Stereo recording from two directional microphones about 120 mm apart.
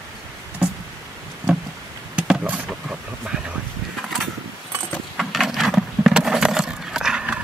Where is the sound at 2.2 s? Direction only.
10° right (ahead or behind).